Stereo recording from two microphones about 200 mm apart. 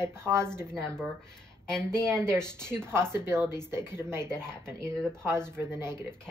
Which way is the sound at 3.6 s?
10° right (ahead or behind).